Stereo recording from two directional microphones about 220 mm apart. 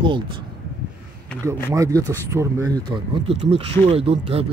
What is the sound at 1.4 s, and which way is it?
Speech, 15° right (ahead or behind).